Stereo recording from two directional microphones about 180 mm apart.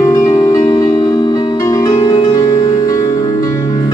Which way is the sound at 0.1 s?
15° left (ahead or behind).